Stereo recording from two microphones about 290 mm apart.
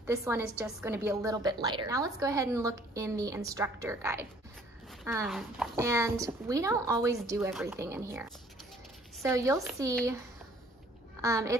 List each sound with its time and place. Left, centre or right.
0.0 s a woman's voice: centre
9.3 s a woman's voice: centre
11.1 s a child's voice: centre